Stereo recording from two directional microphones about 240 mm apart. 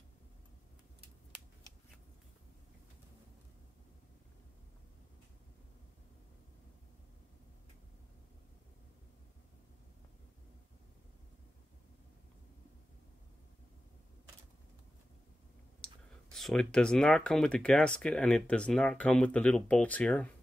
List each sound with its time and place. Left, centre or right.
15.8 s speech: centre